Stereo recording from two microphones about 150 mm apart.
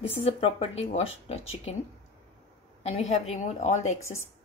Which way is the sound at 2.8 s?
45° left (ahead or behind).